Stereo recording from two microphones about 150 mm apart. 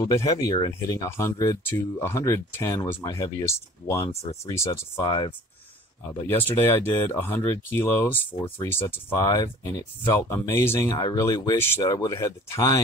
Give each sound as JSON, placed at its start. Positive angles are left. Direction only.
{"t": 0.1, "sound": "speech", "side_deg": 20}
{"t": 4.1, "sound": "speech", "side_deg": 45}
{"t": 4.5, "sound": "speech", "side_deg": 20}
{"t": 6.2, "sound": "speech", "side_deg": 15}